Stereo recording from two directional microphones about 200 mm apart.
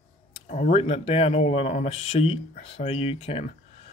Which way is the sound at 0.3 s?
35° left (ahead or behind).